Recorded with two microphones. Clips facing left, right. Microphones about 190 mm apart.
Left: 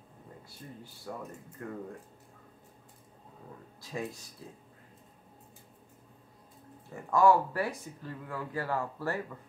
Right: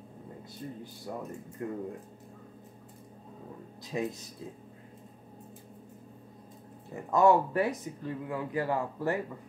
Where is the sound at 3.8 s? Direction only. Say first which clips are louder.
Right 4 dB; 20° right (ahead or behind).